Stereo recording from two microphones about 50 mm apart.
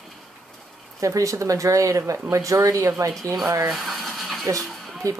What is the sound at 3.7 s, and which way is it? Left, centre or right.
Filing, centre.